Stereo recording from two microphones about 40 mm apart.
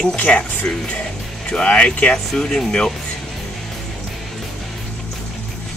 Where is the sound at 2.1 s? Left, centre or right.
Centre.